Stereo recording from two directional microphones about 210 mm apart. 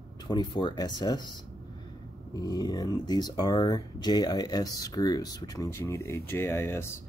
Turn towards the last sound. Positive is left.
turn(degrees=10)  # may be behind; listen again after turning